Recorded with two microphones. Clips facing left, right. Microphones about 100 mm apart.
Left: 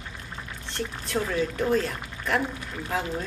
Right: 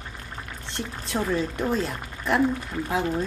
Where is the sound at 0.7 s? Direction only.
20° right (ahead or behind).